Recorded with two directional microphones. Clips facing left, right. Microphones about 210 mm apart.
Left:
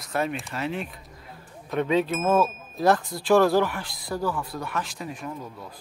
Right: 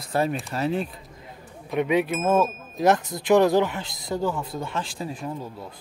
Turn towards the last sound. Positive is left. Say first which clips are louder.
# right 3 dB
turn(degrees=-30)  # may be behind; listen again after turning